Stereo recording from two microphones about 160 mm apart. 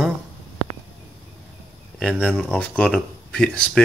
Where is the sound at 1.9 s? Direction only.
5° left (ahead or behind).